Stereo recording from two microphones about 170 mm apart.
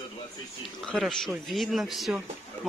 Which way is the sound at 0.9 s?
Centre (ahead or behind).